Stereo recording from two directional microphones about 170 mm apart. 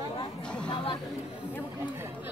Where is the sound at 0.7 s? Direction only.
30° left (ahead or behind).